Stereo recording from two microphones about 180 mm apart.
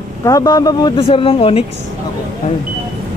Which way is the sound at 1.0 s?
30° left (ahead or behind).